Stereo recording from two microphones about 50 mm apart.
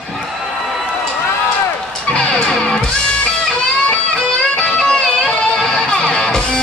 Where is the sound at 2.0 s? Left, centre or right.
Left.